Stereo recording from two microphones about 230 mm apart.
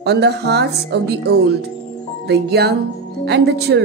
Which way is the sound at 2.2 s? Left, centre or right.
Right.